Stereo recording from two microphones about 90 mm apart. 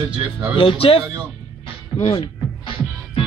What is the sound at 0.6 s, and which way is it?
Speech, 90° left.